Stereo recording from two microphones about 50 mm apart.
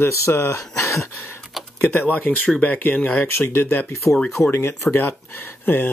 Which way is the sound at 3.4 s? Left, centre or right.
Left.